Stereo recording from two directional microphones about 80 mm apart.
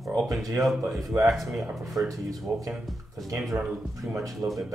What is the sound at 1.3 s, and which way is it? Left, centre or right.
Speech, centre.